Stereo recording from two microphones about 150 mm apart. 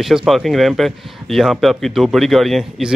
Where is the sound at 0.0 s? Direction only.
Centre (ahead or behind).